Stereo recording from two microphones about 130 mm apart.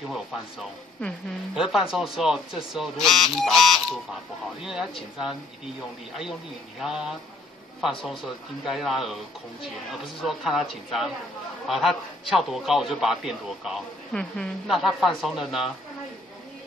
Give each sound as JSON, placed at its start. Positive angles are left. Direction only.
{"t": 0.1, "sound": "speech", "side_deg": 0}
{"t": 6.8, "sound": "speech", "side_deg": 0}
{"t": 10.2, "sound": "speech", "side_deg": 0}